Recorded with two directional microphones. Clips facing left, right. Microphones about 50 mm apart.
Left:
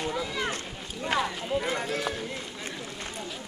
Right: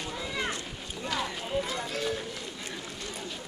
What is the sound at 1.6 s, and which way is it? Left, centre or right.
Run, left.